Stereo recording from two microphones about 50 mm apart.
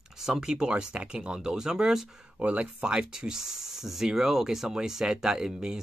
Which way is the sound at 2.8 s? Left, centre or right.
Centre.